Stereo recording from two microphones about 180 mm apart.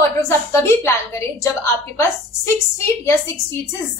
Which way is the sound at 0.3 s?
15° left (ahead or behind).